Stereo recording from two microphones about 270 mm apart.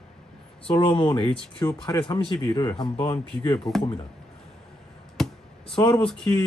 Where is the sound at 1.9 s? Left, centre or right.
Centre.